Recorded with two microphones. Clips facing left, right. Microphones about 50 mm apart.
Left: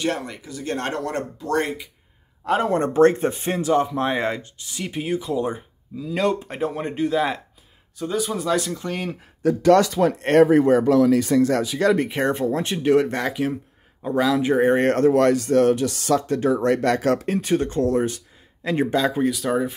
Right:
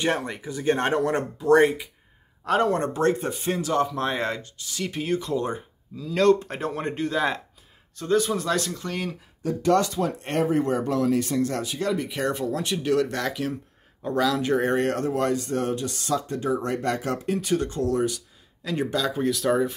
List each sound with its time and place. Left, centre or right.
0.0 s speech: right
2.4 s speech: centre
2.7 s speech: left
3.7 s speech: centre
9.4 s speech: left
12.1 s speech: left
14.8 s speech: left
15.0 s speech: left
16.6 s speech: left
17.3 s speech: left
19.2 s speech: centre